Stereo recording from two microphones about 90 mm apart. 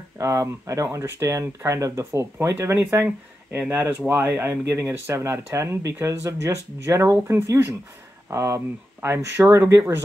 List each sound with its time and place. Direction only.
0.2 s speech: 35° right (ahead or behind)